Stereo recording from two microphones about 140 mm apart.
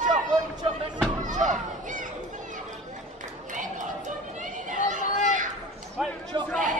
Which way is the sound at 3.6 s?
65° right (ahead or behind).